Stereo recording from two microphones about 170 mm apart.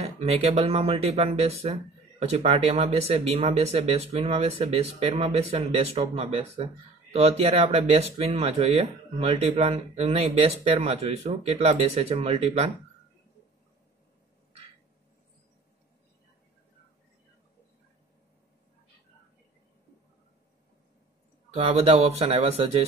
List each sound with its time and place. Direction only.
0.0 s speech: 35° right (ahead or behind)
21.5 s speech: 35° right (ahead or behind)